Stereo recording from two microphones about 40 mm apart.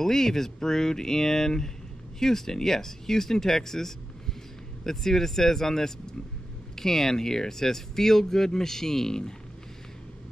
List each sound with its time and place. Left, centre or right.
0.0 s speech: centre